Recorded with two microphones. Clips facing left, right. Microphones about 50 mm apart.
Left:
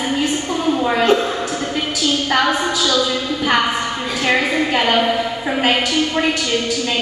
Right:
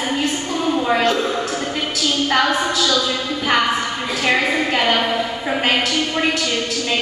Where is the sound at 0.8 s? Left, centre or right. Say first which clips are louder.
Left 2 dB; centre.